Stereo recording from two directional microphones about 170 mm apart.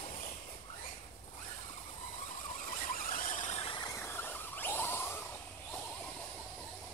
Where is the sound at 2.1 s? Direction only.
50° left (ahead or behind).